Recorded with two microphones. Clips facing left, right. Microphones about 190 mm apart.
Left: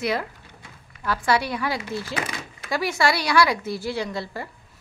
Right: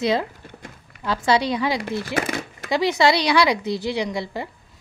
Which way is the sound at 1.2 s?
20° right (ahead or behind).